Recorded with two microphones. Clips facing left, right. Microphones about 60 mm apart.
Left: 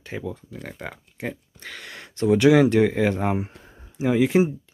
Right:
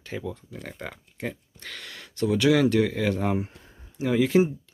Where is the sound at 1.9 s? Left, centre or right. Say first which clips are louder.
Left 5 dB; left.